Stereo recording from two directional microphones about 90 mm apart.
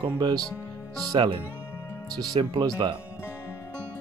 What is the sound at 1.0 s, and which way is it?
Speech, 45° right (ahead or behind).